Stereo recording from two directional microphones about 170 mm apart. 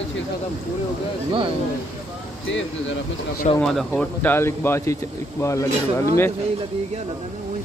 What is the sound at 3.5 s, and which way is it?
Speech, 5° left (ahead or behind).